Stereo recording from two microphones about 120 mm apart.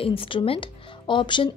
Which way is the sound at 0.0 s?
50° left (ahead or behind).